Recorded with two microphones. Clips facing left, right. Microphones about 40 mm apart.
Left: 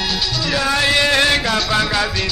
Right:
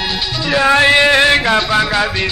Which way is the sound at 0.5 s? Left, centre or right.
Right.